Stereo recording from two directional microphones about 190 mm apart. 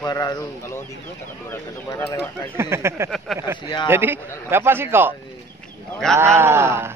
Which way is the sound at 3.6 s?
25° left (ahead or behind).